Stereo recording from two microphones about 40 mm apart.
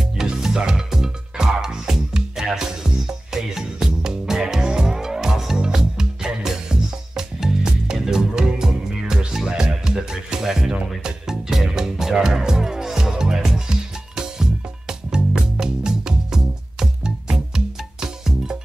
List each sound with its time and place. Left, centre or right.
0.2 s music: centre